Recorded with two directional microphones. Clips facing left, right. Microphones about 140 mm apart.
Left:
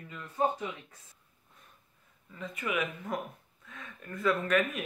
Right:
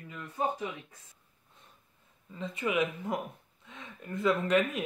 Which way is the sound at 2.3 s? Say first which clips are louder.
Right 3 dB; 25° right (ahead or behind).